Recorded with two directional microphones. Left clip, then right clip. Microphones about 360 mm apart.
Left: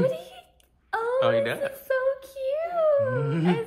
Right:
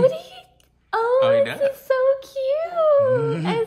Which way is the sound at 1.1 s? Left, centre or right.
Centre.